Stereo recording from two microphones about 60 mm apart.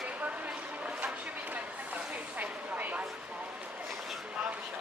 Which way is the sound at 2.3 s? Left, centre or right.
Right.